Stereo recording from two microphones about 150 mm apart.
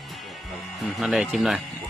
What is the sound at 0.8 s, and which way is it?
Speech, centre (ahead or behind).